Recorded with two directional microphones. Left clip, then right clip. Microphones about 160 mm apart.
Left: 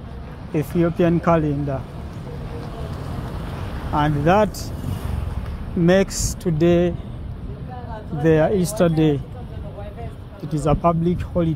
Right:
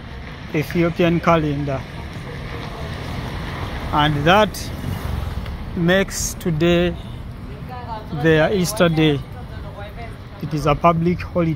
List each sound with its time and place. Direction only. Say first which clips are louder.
0.6 s speech: right 1 dB; 15° left (ahead or behind)
3.9 s speech: right 3 dB; 10° left (ahead or behind)
5.9 s speech: even; 30° left (ahead or behind)
8.2 s speech: right 1 dB; 15° left (ahead or behind)
10.6 s speech: right 3 dB; 15° left (ahead or behind)